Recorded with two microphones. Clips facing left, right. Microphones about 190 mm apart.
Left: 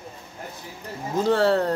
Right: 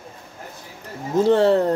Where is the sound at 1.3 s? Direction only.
20° right (ahead or behind).